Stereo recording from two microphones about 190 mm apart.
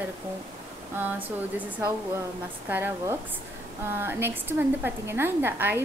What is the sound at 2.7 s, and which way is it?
A woman's voice, 10° right (ahead or behind).